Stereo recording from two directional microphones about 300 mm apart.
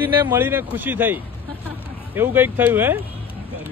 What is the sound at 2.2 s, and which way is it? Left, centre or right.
Speech, centre.